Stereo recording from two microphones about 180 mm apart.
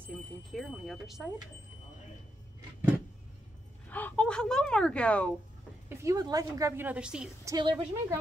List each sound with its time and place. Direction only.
0.0 s speech: centre (ahead or behind)
3.9 s speech: 10° left (ahead or behind)
5.9 s a woman's voice: 20° right (ahead or behind)
7.4 s a woman's voice: 25° right (ahead or behind)